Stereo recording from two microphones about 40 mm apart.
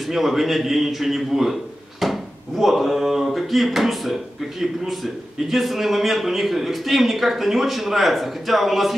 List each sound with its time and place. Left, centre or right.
0.0 s a man's voice: centre